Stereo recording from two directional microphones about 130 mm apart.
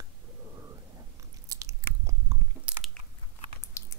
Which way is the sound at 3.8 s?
25° left (ahead or behind).